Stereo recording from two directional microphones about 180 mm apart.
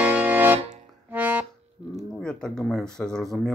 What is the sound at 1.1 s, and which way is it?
Music, 10° right (ahead or behind).